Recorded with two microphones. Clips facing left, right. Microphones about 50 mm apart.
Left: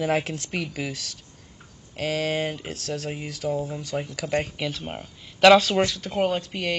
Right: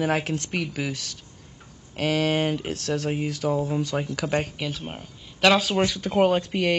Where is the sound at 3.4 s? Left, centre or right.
Right.